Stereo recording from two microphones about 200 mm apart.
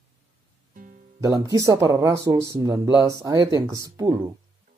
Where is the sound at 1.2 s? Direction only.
15° right (ahead or behind).